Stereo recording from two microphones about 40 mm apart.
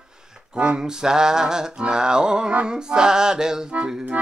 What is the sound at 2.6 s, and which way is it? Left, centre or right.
Music, centre.